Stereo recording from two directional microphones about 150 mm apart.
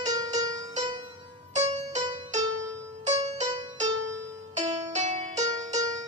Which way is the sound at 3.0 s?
50° right (ahead or behind).